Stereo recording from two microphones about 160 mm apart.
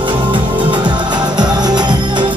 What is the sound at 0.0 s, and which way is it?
Music, 30° right (ahead or behind).